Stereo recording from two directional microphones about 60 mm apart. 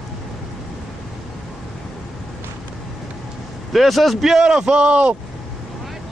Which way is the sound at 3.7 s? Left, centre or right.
Centre.